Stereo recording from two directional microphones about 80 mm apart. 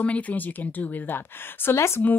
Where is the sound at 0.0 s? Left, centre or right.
Centre.